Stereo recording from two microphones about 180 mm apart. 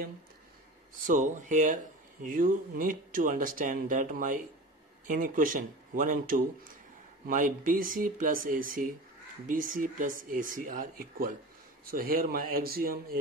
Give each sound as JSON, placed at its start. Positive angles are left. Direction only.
{"t": 1.0, "sound": "speech", "side_deg": -45}